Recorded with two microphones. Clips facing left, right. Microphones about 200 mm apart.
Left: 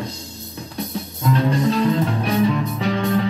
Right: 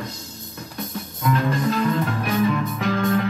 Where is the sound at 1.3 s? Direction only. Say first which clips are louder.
Left 3 dB; 30° left (ahead or behind).